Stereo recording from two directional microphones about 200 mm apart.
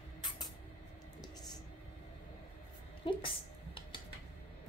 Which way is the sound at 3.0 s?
25° left (ahead or behind).